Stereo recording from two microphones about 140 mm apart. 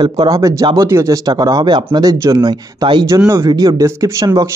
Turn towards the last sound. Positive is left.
turn(degrees=-25)  # may be behind; listen again after turning